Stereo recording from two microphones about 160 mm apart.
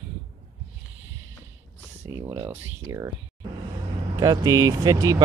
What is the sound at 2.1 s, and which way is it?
Speech, 20° right (ahead or behind).